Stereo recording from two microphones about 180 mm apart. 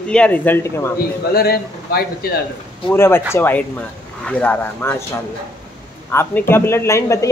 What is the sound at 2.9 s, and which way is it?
Speech, 15° left (ahead or behind).